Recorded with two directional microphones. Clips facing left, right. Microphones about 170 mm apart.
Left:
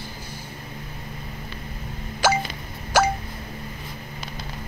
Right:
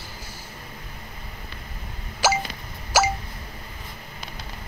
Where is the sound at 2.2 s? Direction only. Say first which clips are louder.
Left 1 dB; 5° right (ahead or behind).